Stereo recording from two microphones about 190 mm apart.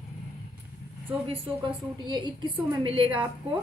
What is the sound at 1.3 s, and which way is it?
A woman's voice, 25° right (ahead or behind).